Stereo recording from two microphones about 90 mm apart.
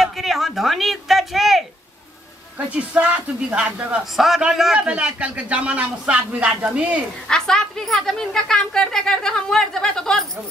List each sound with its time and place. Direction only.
0.0 s a sound: centre (ahead or behind)
2.7 s a man's voice: 15° right (ahead or behind)
7.2 s a woman's voice: 5° left (ahead or behind)